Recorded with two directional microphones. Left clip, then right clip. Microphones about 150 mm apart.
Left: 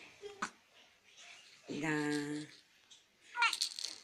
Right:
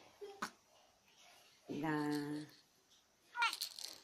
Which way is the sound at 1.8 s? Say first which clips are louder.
Left 3 dB; 10° left (ahead or behind).